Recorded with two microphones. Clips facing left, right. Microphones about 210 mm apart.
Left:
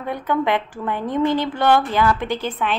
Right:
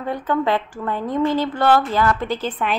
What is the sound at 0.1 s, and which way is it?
A woman's voice, 15° left (ahead or behind).